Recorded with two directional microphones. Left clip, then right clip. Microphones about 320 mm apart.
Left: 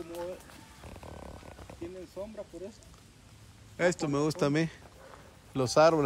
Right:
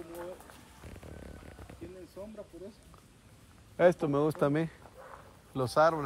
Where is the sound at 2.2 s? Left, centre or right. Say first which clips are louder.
Left 5 dB; left.